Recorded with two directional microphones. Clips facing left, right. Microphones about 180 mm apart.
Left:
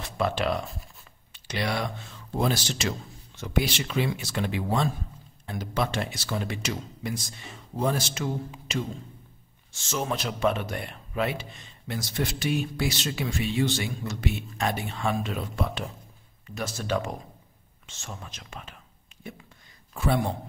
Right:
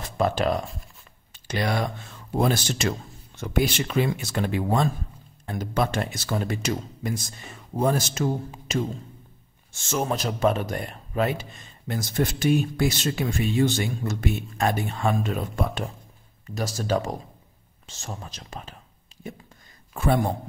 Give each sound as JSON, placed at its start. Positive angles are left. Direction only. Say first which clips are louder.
{"t": 0.2, "sound": "speech", "louder": "right 3 dB", "side_deg": -40}
{"t": 16.5, "sound": "speech", "louder": "right 3 dB", "side_deg": -35}
{"t": 20.0, "sound": "speech", "louder": "right 3 dB", "side_deg": -50}